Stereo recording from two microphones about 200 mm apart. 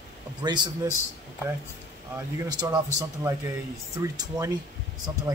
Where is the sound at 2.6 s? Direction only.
20° right (ahead or behind).